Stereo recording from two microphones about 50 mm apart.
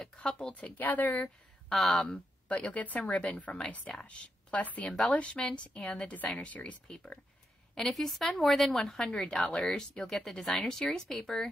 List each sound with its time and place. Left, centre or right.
0.0 s speech: centre
0.8 s speech: left
1.7 s speech: centre
2.0 s a woman's voice: left
7.7 s speech: centre